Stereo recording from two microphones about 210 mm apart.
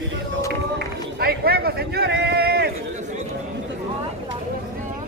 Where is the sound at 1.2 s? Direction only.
45° right (ahead or behind).